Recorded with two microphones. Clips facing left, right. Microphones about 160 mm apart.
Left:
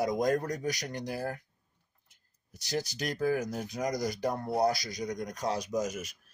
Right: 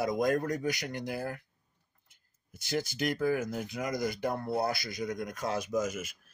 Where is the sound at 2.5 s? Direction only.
40° left (ahead or behind).